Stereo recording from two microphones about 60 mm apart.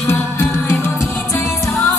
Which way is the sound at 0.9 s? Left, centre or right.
Centre.